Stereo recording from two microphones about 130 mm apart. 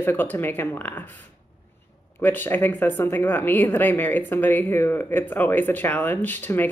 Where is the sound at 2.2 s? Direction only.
15° left (ahead or behind).